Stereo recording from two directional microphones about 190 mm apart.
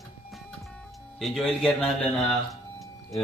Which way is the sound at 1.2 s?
Centre (ahead or behind).